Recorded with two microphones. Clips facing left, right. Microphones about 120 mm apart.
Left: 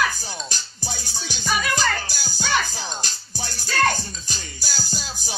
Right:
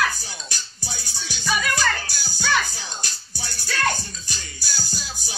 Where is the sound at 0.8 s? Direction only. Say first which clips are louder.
Left 4 dB; 40° left (ahead or behind).